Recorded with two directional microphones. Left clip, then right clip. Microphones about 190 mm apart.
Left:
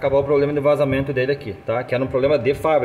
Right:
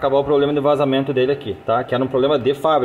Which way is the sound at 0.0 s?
5° right (ahead or behind).